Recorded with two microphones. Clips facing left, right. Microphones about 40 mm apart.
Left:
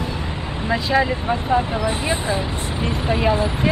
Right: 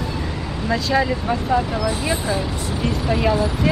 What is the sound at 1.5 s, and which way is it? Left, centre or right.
Speech, left.